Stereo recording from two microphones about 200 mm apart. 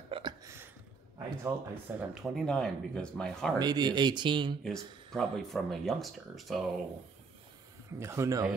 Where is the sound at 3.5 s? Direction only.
20° right (ahead or behind).